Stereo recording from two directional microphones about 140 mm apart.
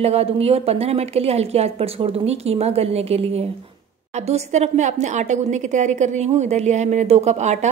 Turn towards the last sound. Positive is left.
turn(degrees=-55)  # may be behind; listen again after turning